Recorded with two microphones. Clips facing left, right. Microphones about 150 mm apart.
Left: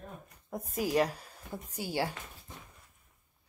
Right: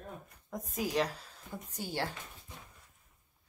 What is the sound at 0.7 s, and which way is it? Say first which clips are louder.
Speech: left 4 dB; 10° left (ahead or behind).